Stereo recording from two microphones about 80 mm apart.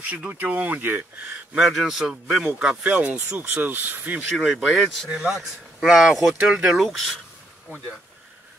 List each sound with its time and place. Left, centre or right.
0.3 s speech: centre
1.6 s a man's voice: centre; by 4.2 s right
4.3 s speech: centre